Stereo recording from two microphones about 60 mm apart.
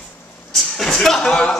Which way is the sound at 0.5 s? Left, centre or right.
Centre.